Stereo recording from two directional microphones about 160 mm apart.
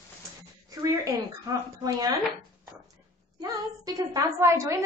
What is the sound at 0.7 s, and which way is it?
A woman's voice, 20° right (ahead or behind).